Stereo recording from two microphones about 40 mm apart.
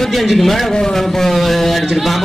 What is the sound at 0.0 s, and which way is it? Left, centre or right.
Speech, centre.